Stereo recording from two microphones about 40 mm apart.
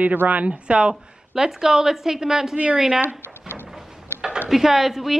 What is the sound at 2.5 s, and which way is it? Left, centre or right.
Speech, right.